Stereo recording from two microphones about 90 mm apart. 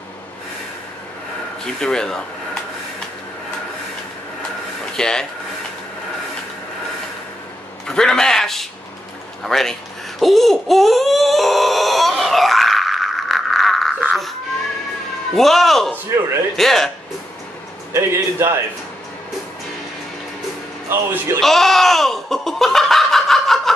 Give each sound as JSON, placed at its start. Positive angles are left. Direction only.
{"t": 1.6, "sound": "speech", "side_deg": 5}
{"t": 4.9, "sound": "speech", "side_deg": 5}
{"t": 7.8, "sound": "a man's voice", "side_deg": 10}
{"t": 9.4, "sound": "baby cry", "side_deg": 5}
{"t": 15.3, "sound": "a man's voice", "side_deg": 0}
{"t": 17.9, "sound": "a man's voice", "side_deg": -30}
{"t": 20.9, "sound": "a man's voice", "side_deg": -25}
{"t": 21.4, "sound": "a sound", "side_deg": 5}